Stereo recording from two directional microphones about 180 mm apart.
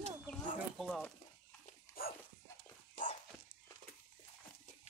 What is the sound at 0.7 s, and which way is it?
Speech, centre (ahead or behind).